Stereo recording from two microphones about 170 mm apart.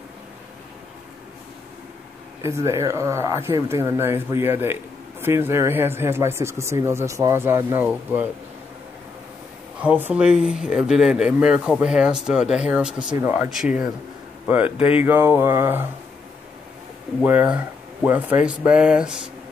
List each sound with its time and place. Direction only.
2.4 s speech: 15° right (ahead or behind)
9.8 s speech: 10° right (ahead or behind)
14.8 s speech: 35° left (ahead or behind)
15.0 s speech: 15° right (ahead or behind)
17.2 s speech: 10° right (ahead or behind)